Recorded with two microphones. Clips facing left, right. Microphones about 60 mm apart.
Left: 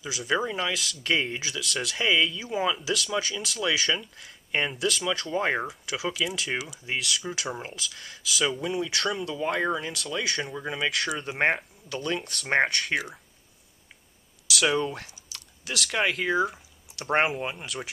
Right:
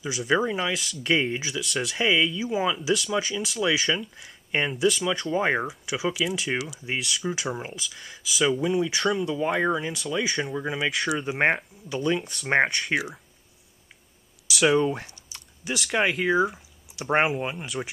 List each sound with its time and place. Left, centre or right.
0.3 s speech: centre
14.5 s speech: centre
15.3 s typing: centre
15.8 s speech: centre